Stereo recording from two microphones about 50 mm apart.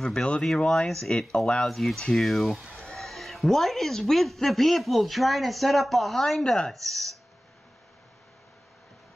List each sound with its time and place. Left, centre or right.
0.0 s speech: centre
1.7 s speech: centre
2.0 s speech: centre
2.2 s speech: centre